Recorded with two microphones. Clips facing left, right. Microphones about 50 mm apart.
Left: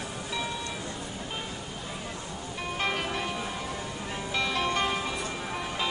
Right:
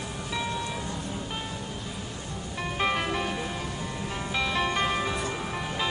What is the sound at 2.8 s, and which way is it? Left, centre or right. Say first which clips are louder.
Music: right 3 dB; centre.